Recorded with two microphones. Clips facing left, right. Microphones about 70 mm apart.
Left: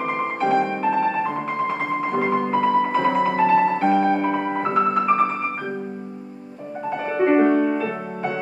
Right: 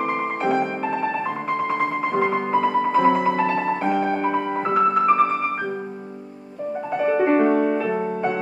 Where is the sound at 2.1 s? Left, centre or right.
Centre.